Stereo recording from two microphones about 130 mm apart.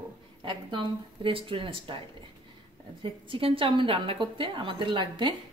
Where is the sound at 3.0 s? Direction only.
40° right (ahead or behind).